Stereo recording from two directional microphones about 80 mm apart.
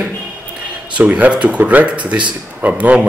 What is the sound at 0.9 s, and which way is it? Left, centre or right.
Speech, centre.